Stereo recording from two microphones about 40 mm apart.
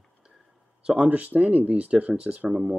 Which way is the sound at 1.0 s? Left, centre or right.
Right.